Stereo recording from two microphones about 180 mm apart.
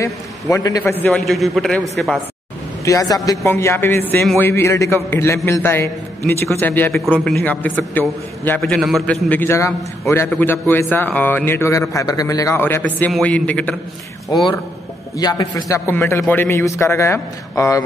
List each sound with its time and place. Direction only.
0.0 s a man's voice: 20° left (ahead or behind); by 2.1 s centre (ahead or behind)
2.8 s a man's voice: 20° left (ahead or behind)
14.3 s a man's voice: 20° left (ahead or behind)